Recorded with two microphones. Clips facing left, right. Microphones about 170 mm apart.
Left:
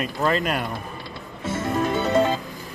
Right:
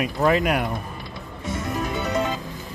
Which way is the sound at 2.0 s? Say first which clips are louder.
Left 5 dB; 25° left (ahead or behind).